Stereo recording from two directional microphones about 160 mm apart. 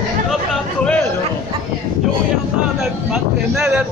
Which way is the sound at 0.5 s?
5° left (ahead or behind).